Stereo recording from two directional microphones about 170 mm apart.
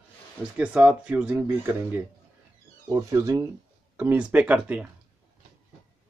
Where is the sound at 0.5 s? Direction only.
5° right (ahead or behind).